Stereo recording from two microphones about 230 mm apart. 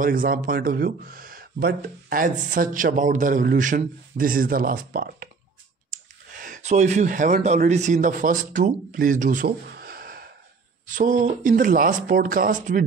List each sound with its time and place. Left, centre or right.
0.0 s a man's voice: right
6.4 s a man's voice: right